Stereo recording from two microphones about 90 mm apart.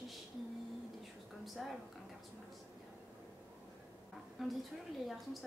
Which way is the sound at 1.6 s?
Centre (ahead or behind).